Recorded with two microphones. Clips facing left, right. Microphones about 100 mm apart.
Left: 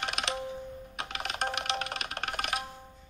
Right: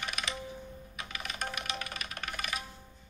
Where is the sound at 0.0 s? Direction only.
70° left (ahead or behind).